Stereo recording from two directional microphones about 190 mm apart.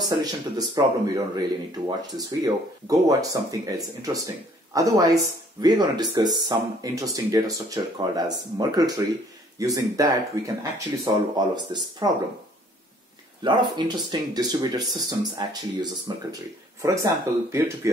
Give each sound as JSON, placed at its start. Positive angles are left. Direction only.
{"t": 0.2, "sound": "speech", "side_deg": -20}
{"t": 13.4, "sound": "speech", "side_deg": -25}